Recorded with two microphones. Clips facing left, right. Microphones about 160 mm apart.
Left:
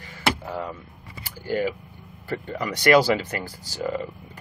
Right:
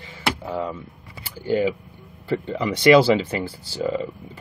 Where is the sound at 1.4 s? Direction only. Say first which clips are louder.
Right 4 dB; 20° right (ahead or behind).